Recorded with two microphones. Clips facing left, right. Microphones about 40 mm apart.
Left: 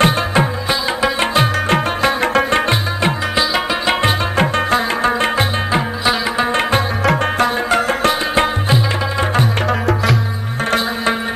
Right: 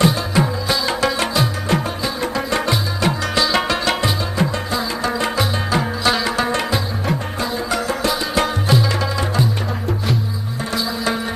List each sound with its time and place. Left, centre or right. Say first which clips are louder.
0.0 s music: left 3 dB; left
2.6 s tabla: left 3 dB; left
4.0 s music: left 4 dB; left
5.8 s music: right 1 dB; left
7.7 s music: left 5 dB; left